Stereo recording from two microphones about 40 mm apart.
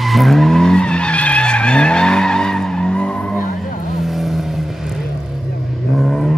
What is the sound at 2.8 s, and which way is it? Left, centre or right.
Skidding, left.